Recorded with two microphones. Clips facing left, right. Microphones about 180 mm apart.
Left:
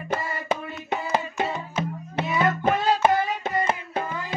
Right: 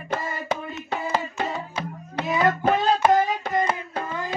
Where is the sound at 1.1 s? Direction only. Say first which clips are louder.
Left 2 dB; 20° left (ahead or behind).